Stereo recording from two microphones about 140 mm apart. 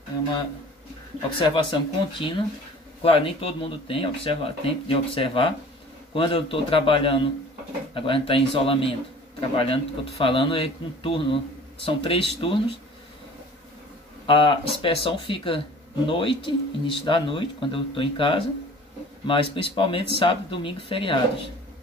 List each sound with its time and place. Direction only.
1.4 s speech: 35° left (ahead or behind)
14.2 s speech: 40° left (ahead or behind)